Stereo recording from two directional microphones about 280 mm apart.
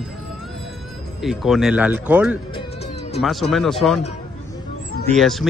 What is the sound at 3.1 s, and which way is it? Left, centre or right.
Speech, centre.